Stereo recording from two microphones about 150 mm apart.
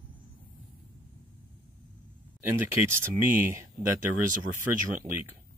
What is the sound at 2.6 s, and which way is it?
Speech, 15° right (ahead or behind).